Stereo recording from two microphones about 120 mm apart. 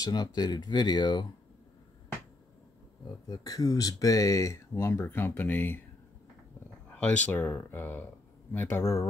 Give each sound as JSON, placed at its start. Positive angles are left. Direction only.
{"t": 0.0, "sound": "speech", "side_deg": 35}
{"t": 3.3, "sound": "speech", "side_deg": 30}
{"t": 6.9, "sound": "speech", "side_deg": 10}